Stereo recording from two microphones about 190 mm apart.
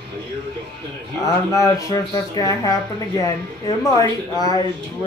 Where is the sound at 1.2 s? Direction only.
15° left (ahead or behind).